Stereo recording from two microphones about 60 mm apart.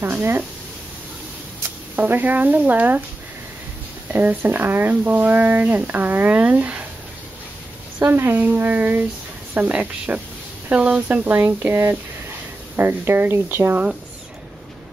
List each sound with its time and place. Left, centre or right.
0.0 s speech: right
2.0 s speech: right
4.1 s speech: right
8.0 s speech: right